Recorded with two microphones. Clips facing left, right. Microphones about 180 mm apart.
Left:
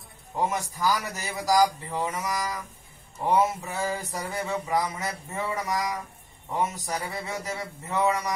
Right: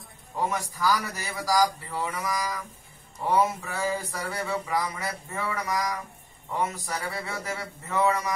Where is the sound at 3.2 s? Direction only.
20° left (ahead or behind).